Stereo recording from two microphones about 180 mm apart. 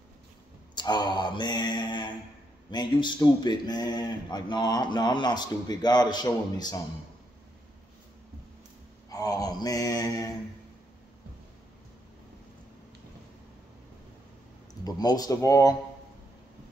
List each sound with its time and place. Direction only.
0.7 s speech: 25° left (ahead or behind)
9.1 s mantra: 20° left (ahead or behind)
14.9 s speech: 20° left (ahead or behind)